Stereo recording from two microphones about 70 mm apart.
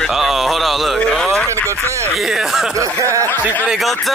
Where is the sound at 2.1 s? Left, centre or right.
Centre.